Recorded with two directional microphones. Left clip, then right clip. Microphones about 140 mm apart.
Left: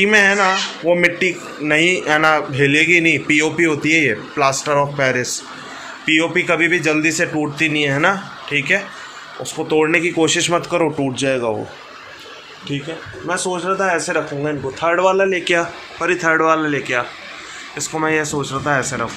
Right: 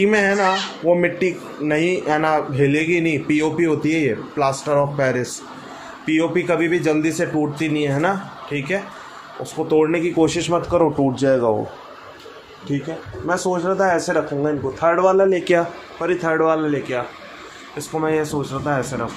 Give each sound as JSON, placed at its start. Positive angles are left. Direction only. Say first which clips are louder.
{"t": 0.0, "sound": "speech", "louder": "left 4 dB", "side_deg": -20}
{"t": 11.1, "sound": "a man's voice", "louder": "right 2 dB", "side_deg": -25}
{"t": 13.3, "sound": "speech", "louder": "right 1 dB", "side_deg": -35}
{"t": 14.4, "sound": "speech", "louder": "right 1 dB", "side_deg": -5}
{"t": 15.2, "sound": "a man's voice", "louder": "even", "side_deg": -30}
{"t": 16.0, "sound": "speech", "louder": "left 3 dB", "side_deg": -10}